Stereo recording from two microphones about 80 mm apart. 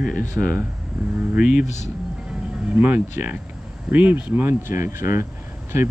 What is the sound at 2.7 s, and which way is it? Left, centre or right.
Speech, right.